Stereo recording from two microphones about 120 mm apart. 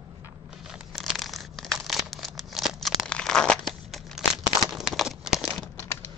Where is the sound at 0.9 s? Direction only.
Centre (ahead or behind).